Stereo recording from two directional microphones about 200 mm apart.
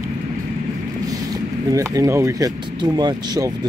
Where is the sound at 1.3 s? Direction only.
15° right (ahead or behind).